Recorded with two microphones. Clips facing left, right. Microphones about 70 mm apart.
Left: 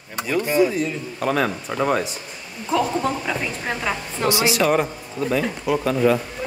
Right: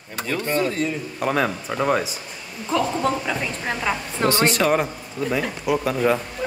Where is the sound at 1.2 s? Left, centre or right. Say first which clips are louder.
Left 1 dB; centre.